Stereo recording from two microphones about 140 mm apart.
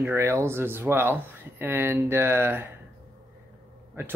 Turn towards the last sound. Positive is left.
turn(degrees=-15)  # may be behind; listen again after turning